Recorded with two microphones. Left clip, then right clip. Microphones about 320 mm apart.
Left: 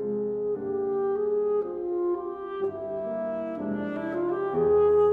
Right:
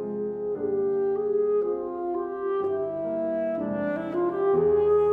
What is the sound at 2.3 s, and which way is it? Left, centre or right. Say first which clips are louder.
French horn: right 5 dB; left.